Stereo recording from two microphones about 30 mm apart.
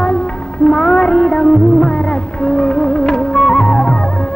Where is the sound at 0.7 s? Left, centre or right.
Left.